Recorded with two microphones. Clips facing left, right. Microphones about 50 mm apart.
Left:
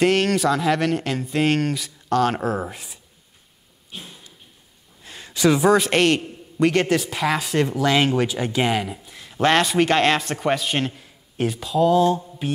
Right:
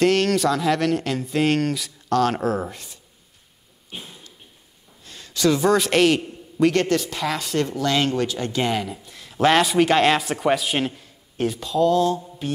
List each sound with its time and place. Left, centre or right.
0.0 s speech: centre
3.9 s a sound: right
5.0 s a man's voice: centre